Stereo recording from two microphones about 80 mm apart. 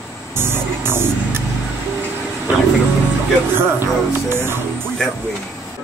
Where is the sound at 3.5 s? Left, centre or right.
Right.